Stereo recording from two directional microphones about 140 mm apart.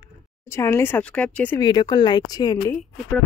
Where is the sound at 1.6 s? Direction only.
30° left (ahead or behind).